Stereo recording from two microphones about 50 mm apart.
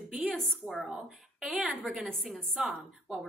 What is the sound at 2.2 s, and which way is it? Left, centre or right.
Speech, centre.